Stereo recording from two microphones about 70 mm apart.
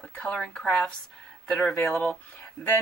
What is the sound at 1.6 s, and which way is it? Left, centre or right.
Speech, left.